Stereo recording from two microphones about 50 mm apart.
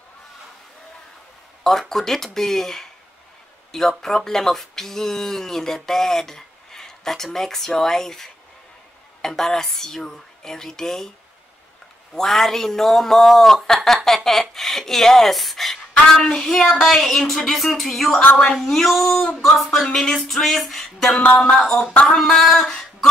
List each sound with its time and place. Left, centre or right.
1.6 s speech: centre
4.0 s speech: centre
12.1 s speech: centre
17.2 s speech: centre
17.5 s speech: centre
21.3 s a sound: left
21.5 s speech: centre